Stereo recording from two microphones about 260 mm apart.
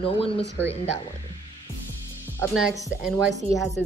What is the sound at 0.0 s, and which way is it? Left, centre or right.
Speech, left.